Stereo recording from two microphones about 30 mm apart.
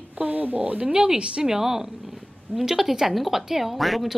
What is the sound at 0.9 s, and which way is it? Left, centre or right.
Speech, right.